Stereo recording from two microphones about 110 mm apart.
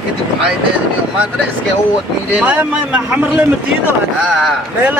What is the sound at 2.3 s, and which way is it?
Speech, 15° right (ahead or behind).